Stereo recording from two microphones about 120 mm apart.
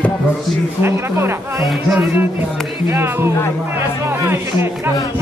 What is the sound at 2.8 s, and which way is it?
Speech, 20° right (ahead or behind).